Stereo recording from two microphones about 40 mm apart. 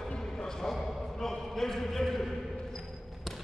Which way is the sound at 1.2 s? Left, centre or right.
Centre.